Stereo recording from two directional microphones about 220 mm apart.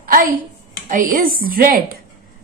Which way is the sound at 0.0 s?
40° right (ahead or behind).